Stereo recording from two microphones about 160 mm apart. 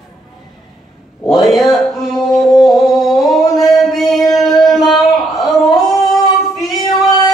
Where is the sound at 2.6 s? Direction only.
Centre (ahead or behind).